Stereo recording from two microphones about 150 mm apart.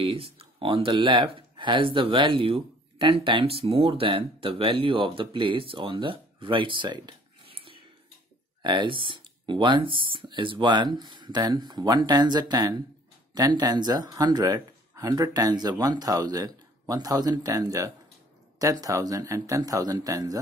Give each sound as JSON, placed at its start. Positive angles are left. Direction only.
{"t": 0.0, "sound": "speech", "side_deg": -40}